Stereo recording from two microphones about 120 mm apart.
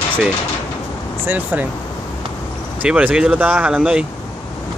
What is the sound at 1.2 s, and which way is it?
Speech, 15° right (ahead or behind).